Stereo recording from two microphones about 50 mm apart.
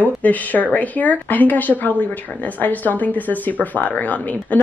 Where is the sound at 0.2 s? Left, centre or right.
Left.